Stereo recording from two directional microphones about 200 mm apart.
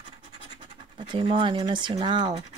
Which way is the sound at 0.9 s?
25° right (ahead or behind).